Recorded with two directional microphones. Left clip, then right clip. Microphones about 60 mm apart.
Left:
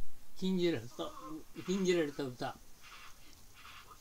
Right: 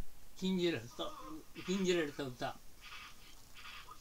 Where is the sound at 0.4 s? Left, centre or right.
Left.